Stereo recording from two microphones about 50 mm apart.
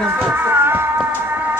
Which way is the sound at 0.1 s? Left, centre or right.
Right.